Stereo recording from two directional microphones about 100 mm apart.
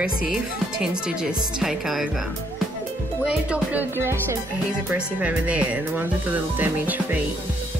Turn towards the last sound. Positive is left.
turn(degrees=-20)  # may be behind; listen again after turning